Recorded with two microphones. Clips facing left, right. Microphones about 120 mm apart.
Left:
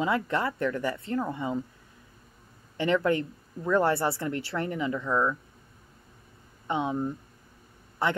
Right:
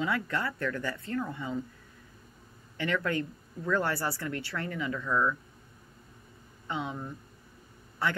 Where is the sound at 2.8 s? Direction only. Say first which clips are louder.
Left 6 dB; 25° left (ahead or behind).